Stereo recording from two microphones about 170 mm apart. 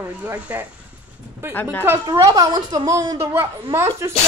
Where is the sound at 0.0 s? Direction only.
10° right (ahead or behind).